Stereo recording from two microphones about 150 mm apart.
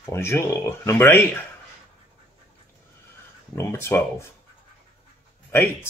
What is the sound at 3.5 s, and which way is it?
Speech, 15° left (ahead or behind).